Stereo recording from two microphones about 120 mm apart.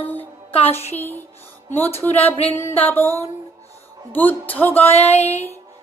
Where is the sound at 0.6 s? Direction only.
60° left (ahead or behind).